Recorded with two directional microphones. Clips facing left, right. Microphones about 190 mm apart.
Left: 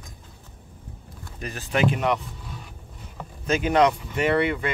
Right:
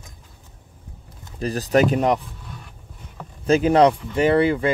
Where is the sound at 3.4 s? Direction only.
35° right (ahead or behind).